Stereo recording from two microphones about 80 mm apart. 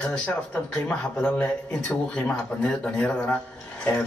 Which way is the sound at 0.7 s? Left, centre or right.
Centre.